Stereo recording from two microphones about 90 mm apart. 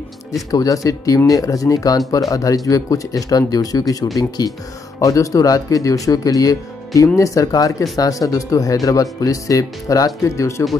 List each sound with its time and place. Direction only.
0.5 s speech: 40° left (ahead or behind)